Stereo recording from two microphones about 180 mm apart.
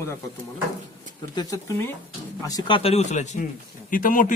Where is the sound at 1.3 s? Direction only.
20° left (ahead or behind).